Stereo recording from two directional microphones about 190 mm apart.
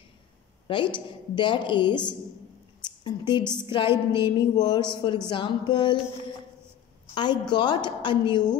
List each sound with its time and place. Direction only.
0.7 s a woman's voice: 25° left (ahead or behind)
7.2 s a woman's voice: 25° left (ahead or behind)